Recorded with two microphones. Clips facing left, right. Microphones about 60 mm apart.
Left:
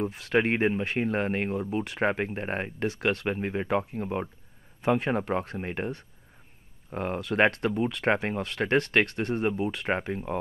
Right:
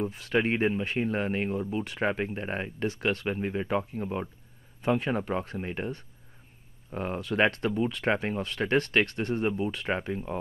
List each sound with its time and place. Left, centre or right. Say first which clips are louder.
0.1 s speech: left 2 dB; left
0.5 s speech: left 1 dB; left